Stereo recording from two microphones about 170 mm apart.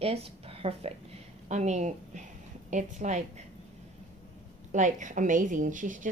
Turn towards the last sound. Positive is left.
turn(degrees=-50)  # may be behind; listen again after turning